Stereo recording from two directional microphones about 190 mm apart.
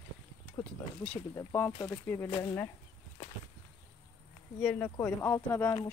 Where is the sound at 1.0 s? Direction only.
10° left (ahead or behind).